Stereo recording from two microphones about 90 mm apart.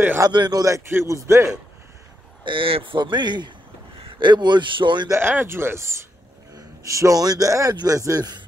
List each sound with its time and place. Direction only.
0.3 s a man's voice: 50° right (ahead or behind); by 1.5 s 30° right (ahead or behind)
2.4 s a man's voice: 75° right (ahead or behind)
5.1 s a man's voice: 25° right (ahead or behind); by 8.4 s 45° right (ahead or behind)